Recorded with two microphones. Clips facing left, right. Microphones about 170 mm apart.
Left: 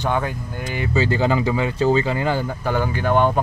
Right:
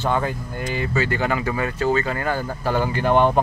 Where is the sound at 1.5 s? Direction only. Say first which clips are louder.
Left 3 dB; 20° left (ahead or behind).